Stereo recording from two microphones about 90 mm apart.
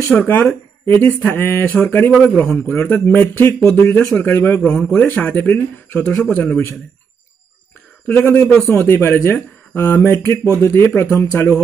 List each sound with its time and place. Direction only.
0.1 s a man's voice: 15° left (ahead or behind)
4.6 s a man's voice: 10° left (ahead or behind)
8.1 s speech: 20° left (ahead or behind)